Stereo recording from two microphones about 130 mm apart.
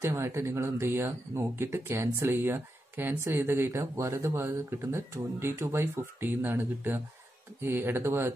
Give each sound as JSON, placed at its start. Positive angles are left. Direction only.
{"t": 0.0, "sound": "speech", "side_deg": -20}